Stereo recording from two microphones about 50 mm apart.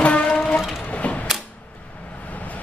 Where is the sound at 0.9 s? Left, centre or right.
Left.